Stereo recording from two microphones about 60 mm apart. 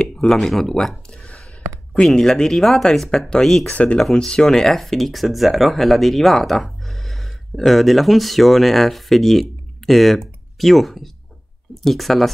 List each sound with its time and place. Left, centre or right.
0.0 s a sound: centre
0.3 s speech: centre
3.7 s speech: left
4.0 s speech: centre